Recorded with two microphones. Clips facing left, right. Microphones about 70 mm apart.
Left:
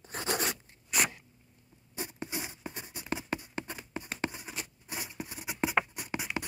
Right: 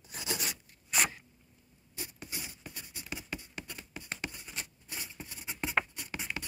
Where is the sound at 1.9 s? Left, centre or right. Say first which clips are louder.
Left 6 dB; left.